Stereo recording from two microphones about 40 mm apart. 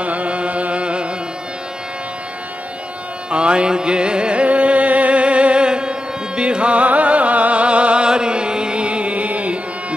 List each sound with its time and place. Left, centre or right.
0.0 s music: right
3.3 s music: right